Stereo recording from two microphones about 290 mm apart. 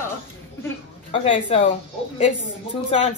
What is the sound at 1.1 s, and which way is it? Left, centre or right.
Speech, centre.